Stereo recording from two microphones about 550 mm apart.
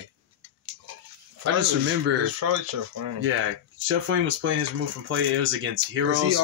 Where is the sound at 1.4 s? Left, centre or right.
Right.